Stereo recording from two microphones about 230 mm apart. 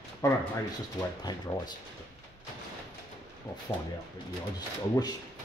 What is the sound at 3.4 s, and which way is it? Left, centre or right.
Speech, centre.